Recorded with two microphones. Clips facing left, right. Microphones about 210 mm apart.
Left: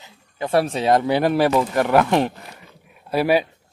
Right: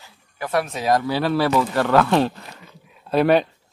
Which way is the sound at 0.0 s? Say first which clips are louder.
Left 3 dB; 25° left (ahead or behind).